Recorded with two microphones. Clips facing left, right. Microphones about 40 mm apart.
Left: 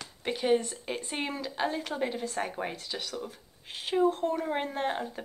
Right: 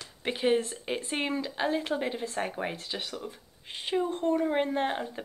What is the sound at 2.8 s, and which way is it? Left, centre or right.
Speech, right.